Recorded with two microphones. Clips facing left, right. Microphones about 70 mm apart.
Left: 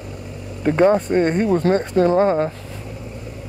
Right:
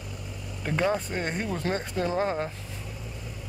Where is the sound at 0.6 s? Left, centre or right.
Left.